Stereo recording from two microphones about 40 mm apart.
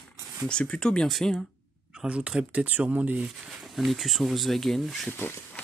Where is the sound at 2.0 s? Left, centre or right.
Right.